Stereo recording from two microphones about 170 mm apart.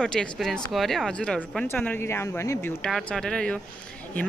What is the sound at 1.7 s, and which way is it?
Speech, 10° left (ahead or behind).